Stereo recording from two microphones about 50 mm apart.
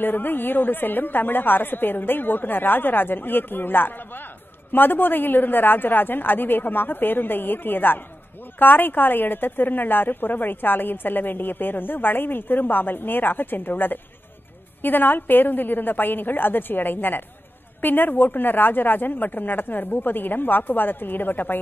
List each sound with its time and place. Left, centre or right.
0.0 s a woman's voice: left